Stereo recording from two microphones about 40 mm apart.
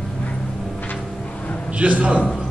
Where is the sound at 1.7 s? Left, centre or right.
Right.